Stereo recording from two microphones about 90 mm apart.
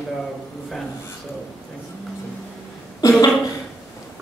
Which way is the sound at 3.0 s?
40° left (ahead or behind).